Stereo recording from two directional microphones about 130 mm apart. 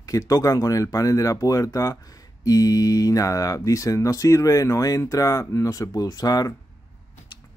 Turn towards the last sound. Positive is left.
turn(degrees=30)  # may be behind; listen again after turning